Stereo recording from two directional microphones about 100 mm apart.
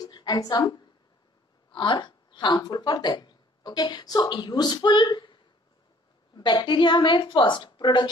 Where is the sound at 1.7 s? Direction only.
55° left (ahead or behind).